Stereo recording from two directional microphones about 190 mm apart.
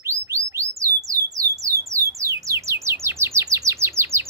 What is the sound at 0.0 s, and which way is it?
Bird, 15° right (ahead or behind).